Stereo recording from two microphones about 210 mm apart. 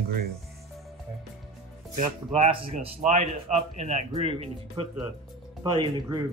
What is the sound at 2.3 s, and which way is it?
A man's voice, 30° right (ahead or behind).